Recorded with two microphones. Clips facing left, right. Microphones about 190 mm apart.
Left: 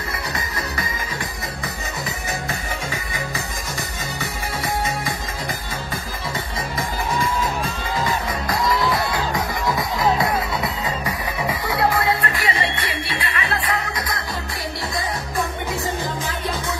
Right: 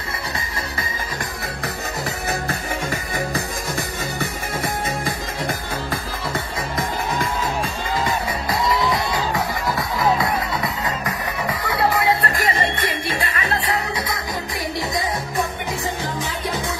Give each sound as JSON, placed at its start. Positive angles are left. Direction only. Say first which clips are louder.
{"t": 2.9, "sound": "music", "louder": "right 4 dB", "side_deg": -55}
{"t": 8.6, "sound": "music", "louder": "even", "side_deg": 0}
{"t": 12.2, "sound": "music", "louder": "right 2 dB", "side_deg": -40}